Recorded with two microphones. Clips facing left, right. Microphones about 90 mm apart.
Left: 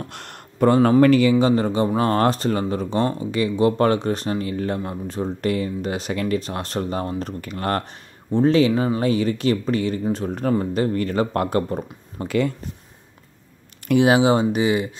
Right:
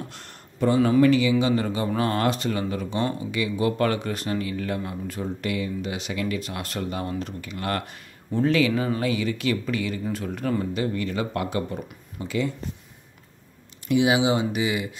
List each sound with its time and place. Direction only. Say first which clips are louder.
0.1 s a sound: left 6 dB; 65° left (ahead or behind)
1.0 s speech: left 4 dB; 50° left (ahead or behind)
13.8 s speech: left 5 dB; 50° left (ahead or behind)